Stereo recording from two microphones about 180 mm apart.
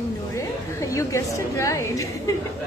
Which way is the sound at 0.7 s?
15° left (ahead or behind).